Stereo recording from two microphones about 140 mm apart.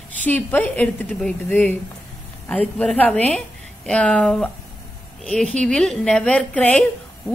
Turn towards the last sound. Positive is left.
turn(degrees=10)  # may be behind; listen again after turning